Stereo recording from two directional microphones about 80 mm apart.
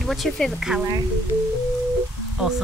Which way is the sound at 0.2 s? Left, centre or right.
Centre.